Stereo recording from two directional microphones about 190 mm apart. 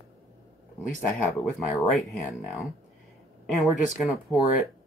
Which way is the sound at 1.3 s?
Centre (ahead or behind).